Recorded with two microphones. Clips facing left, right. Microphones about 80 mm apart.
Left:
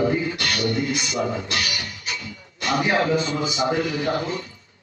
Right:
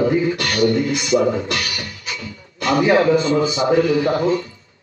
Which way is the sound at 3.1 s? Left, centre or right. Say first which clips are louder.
Right 7 dB; right.